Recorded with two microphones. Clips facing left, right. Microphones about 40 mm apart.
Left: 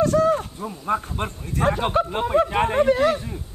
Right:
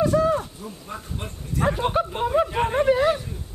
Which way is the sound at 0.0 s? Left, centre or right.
Centre.